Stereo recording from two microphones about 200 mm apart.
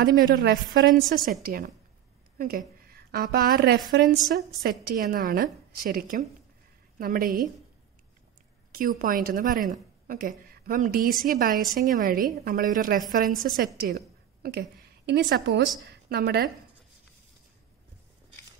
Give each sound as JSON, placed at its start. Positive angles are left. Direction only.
{"t": 0.0, "sound": "a woman's voice", "side_deg": -45}
{"t": 4.6, "sound": "a woman's voice", "side_deg": -45}
{"t": 8.7, "sound": "a woman's voice", "side_deg": -45}
{"t": 13.7, "sound": "a sound", "side_deg": -50}
{"t": 15.0, "sound": "a woman's voice", "side_deg": -55}